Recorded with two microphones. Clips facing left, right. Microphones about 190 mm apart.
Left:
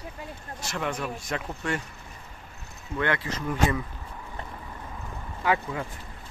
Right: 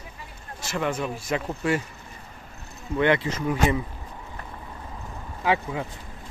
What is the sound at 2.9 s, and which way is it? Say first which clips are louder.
Speech: right 6 dB; 20° right (ahead or behind).